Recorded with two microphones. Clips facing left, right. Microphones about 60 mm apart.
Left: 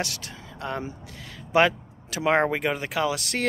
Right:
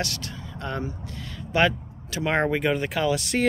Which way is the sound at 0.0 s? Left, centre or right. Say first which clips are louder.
Right 1 dB; centre.